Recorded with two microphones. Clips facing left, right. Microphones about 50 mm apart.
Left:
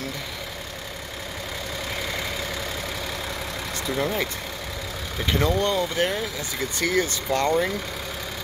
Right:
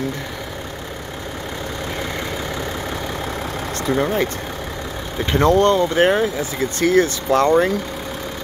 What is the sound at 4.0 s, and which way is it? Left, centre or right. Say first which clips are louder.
Speech: right 5 dB; right.